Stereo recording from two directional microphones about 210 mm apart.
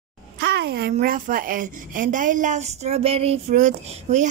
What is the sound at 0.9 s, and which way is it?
A woman's voice, 40° right (ahead or behind).